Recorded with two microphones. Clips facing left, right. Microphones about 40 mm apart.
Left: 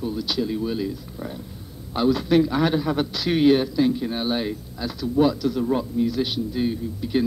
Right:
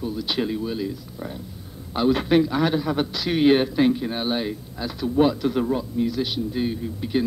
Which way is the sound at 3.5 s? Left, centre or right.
Right.